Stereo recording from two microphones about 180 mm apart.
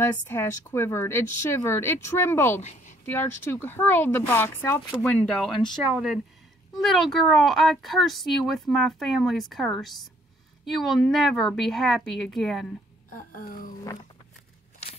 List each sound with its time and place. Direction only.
0.0 s speech: 15° left (ahead or behind)
2.6 s a woman's voice: 40° left (ahead or behind)
3.1 s speech: 10° left (ahead or behind)
13.1 s a sound: 50° left (ahead or behind)